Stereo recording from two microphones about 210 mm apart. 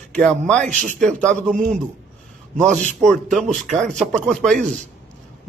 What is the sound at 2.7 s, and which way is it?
Speech, 5° left (ahead or behind).